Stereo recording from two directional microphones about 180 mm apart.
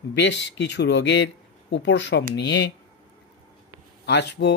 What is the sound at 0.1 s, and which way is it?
Speech, 75° left (ahead or behind).